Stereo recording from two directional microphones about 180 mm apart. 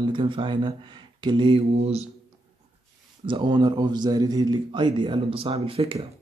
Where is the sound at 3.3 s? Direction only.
25° right (ahead or behind).